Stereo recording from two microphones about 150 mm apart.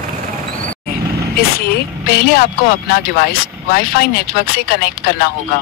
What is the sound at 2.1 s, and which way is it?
Speech, 90° left.